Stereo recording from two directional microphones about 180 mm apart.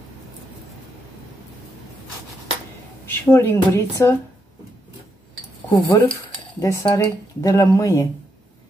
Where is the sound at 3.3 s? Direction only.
15° left (ahead or behind).